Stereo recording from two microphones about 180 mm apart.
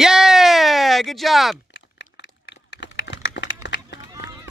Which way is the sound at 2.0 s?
75° left (ahead or behind).